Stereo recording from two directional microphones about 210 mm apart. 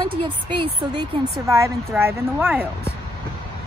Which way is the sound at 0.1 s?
20° right (ahead or behind).